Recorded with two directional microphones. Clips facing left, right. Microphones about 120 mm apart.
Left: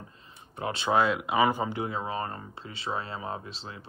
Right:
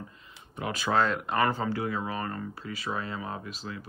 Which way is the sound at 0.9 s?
5° left (ahead or behind).